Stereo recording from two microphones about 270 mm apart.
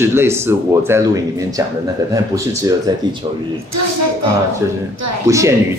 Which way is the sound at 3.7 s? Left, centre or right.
Right.